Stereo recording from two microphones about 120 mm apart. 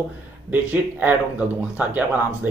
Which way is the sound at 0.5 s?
15° right (ahead or behind).